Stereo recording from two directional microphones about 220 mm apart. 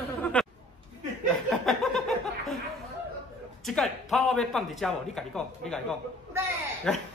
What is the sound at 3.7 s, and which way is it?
Speech, centre (ahead or behind).